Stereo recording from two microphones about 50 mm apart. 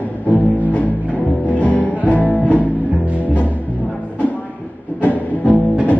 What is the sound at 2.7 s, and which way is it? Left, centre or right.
Music, right.